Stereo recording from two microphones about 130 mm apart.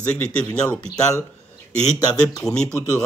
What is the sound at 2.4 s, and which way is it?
Speech, 5° left (ahead or behind).